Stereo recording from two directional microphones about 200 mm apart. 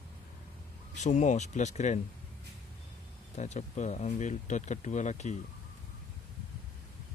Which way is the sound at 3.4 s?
35° left (ahead or behind).